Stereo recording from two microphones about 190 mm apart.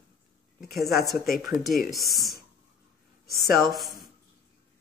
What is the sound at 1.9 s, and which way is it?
Speech, centre (ahead or behind).